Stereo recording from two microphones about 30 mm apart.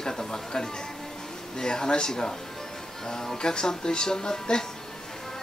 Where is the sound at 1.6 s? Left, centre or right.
Left.